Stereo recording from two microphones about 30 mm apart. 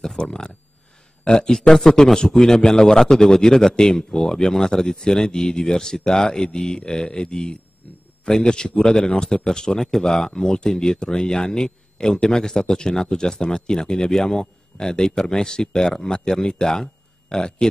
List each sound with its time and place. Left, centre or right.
0.2 s a man's voice: left
1.7 s a man's voice: centre